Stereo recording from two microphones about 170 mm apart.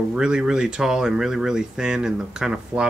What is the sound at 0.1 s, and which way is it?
Speech, 5° right (ahead or behind).